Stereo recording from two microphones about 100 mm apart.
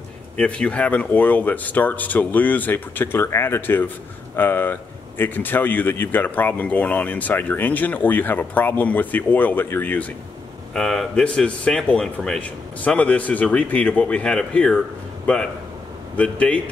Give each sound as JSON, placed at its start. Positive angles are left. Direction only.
{"t": 0.4, "sound": "speech", "side_deg": 10}
{"t": 10.7, "sound": "speech", "side_deg": 5}